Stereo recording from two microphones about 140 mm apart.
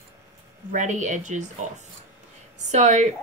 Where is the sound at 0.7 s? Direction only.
60° right (ahead or behind).